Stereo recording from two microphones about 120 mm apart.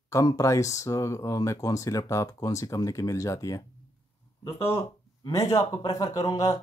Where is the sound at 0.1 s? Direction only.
30° left (ahead or behind).